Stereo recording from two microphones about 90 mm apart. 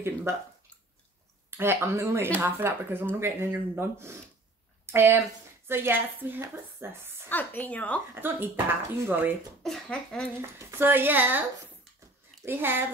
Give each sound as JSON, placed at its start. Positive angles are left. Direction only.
{"t": 0.0, "sound": "speech", "side_deg": -30}
{"t": 1.6, "sound": "speech", "side_deg": -25}
{"t": 7.2, "sound": "a woman's voice", "side_deg": 20}
{"t": 8.1, "sound": "speech", "side_deg": -25}
{"t": 9.6, "sound": "speech", "side_deg": 5}
{"t": 9.8, "sound": "speech", "side_deg": 15}
{"t": 10.6, "sound": "speech", "side_deg": -25}
{"t": 12.4, "sound": "speech", "side_deg": -25}